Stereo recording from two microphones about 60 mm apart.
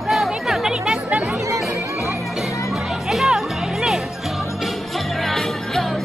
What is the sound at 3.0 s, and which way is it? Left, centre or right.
Music, centre.